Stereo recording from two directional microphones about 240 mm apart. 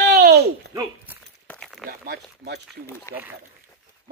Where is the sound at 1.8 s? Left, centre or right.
Right.